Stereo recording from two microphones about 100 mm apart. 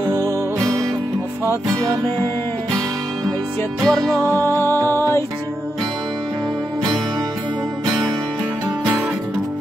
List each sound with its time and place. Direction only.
3.8 s music: centre (ahead or behind)
4.4 s music: 25° left (ahead or behind)